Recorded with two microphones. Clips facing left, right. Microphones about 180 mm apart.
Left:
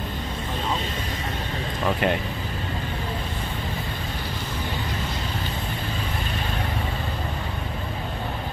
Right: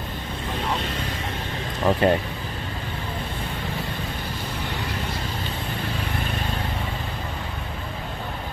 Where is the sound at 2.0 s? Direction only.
35° right (ahead or behind).